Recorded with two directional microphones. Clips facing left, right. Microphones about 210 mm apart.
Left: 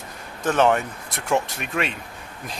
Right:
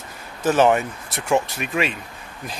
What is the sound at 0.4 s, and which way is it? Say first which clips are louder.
Speech: right 2 dB; 5° right (ahead or behind).